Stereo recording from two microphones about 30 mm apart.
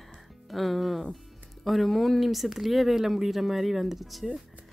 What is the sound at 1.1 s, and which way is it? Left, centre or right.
Music, centre.